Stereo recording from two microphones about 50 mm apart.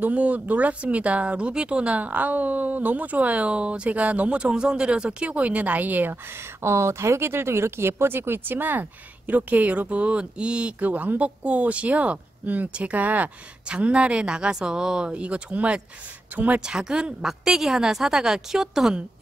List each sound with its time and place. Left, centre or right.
0.0 s speech: right
6.6 s speech: right
10.9 s speech: right
13.7 s a woman's voice: right